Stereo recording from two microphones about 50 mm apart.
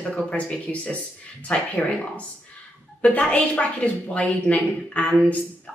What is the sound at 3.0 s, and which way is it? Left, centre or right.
A woman's voice, left.